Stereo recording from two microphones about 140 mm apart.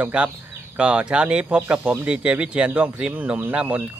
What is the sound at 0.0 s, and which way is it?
Speech, 10° right (ahead or behind).